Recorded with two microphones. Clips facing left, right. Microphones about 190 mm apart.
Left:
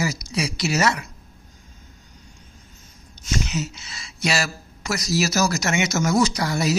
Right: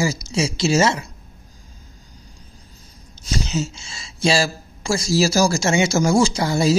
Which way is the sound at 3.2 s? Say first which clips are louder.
Right 2 dB; 30° right (ahead or behind).